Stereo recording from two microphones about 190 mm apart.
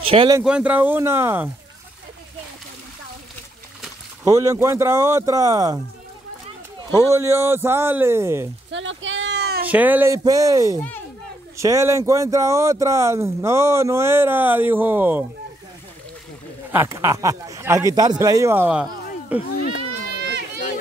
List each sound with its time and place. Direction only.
0.0 s speech: 30° right (ahead or behind)
0.4 s speech: 5° right (ahead or behind)
4.2 s speech: 15° right (ahead or behind)
6.9 s speech: 15° right (ahead or behind)
8.7 s a sound: 85° right; by 9.7 s 60° right (ahead or behind)
9.7 s speech: 10° right (ahead or behind)
16.7 s speech: 15° right (ahead or behind)